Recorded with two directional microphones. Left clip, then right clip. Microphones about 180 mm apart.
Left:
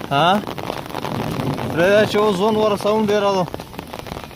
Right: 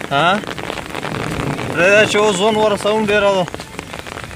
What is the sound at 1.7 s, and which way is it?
Speech, 35° left (ahead or behind).